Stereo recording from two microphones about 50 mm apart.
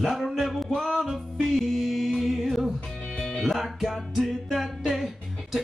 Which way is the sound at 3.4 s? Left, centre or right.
Centre.